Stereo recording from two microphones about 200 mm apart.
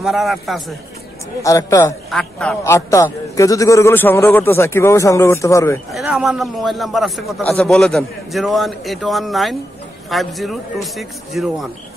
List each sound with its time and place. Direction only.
0.0 s a man's voice: centre (ahead or behind)
1.4 s a man's voice: 15° left (ahead or behind)
2.0 s a man's voice: 5° left (ahead or behind)
5.9 s a man's voice: centre (ahead or behind)